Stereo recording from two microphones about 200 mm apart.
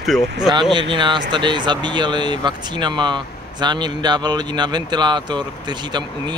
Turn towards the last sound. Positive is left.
turn(degrees=-20)  # may be behind; listen again after turning